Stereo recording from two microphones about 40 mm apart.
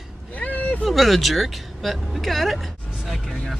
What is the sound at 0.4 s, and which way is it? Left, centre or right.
Vehicle, left.